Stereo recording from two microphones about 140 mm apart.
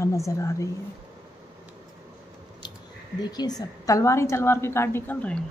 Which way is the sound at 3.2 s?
30° left (ahead or behind).